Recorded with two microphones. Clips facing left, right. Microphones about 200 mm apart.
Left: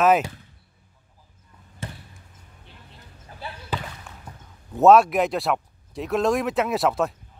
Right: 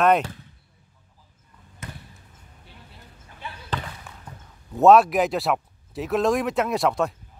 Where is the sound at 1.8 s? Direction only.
30° left (ahead or behind).